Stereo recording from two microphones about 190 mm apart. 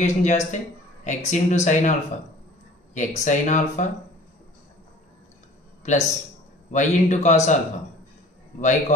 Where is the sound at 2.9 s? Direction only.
40° left (ahead or behind).